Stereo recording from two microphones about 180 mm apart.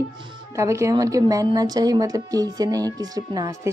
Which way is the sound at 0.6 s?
15° right (ahead or behind).